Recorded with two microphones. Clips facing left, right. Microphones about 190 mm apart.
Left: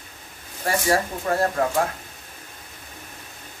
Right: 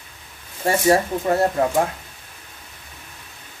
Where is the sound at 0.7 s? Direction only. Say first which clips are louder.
Right 5 dB; 25° right (ahead or behind).